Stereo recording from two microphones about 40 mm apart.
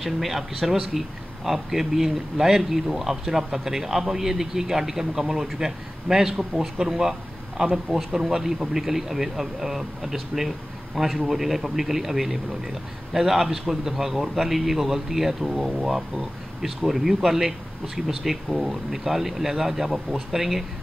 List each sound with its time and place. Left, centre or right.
0.0 s a man's voice: centre